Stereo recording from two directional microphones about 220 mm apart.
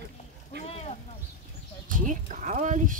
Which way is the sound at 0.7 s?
30° left (ahead or behind).